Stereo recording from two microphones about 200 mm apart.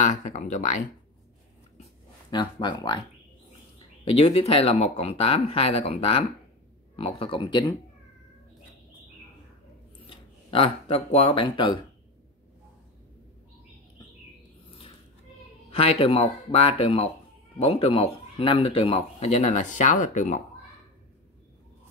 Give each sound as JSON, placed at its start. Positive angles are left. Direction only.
{"t": 0.0, "sound": "speech", "side_deg": 35}
{"t": 2.3, "sound": "speech", "side_deg": 20}
{"t": 4.0, "sound": "speech", "side_deg": 30}
{"t": 10.0, "sound": "speech", "side_deg": 30}
{"t": 15.7, "sound": "speech", "side_deg": 30}